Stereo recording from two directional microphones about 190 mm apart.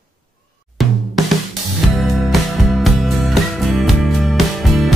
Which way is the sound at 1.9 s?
Centre (ahead or behind).